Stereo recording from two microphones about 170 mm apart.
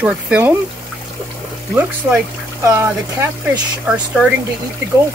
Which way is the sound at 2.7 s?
15° right (ahead or behind).